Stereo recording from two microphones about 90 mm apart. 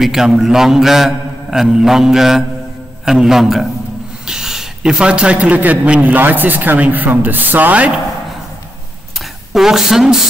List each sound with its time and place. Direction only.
0.0 s a man's voice: 5° right (ahead or behind)
9.5 s a man's voice: 5° right (ahead or behind)